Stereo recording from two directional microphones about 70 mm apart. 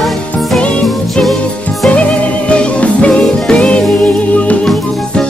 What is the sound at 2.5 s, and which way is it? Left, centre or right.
Music, centre.